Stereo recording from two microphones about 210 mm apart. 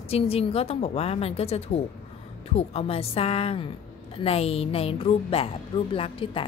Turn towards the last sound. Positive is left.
turn(degrees=25)  # may be behind; listen again after turning